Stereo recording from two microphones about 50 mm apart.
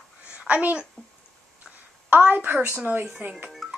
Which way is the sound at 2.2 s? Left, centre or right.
Right.